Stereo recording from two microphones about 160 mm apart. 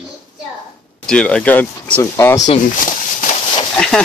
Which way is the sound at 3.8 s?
5° left (ahead or behind).